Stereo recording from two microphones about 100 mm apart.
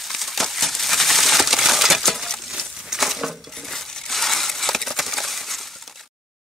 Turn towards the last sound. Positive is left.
turn(degrees=0)  # may be behind; listen again after turning